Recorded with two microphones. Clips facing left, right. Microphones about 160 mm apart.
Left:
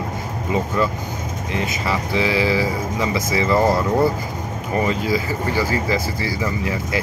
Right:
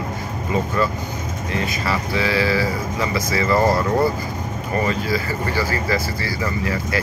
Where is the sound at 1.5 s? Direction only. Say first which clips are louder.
Even; 20° left (ahead or behind).